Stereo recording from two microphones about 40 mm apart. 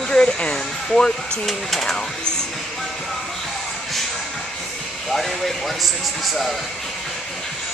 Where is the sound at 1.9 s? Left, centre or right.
Centre.